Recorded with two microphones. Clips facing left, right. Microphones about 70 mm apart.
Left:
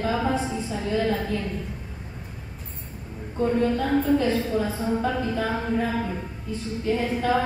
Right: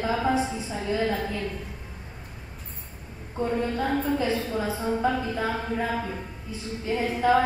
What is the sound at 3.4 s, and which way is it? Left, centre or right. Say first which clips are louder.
A woman's voice: left 4 dB; centre.